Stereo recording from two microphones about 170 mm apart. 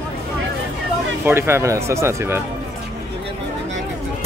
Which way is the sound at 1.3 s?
15° right (ahead or behind).